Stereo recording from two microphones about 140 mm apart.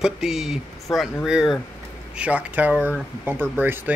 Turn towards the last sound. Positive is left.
turn(degrees=-15)  # may be behind; listen again after turning